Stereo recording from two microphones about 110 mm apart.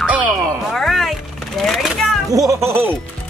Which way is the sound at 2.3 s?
30° right (ahead or behind).